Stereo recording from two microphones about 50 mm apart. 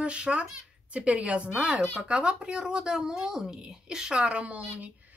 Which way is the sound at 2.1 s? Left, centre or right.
Centre.